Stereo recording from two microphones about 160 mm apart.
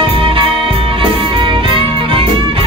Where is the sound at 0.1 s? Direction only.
35° right (ahead or behind).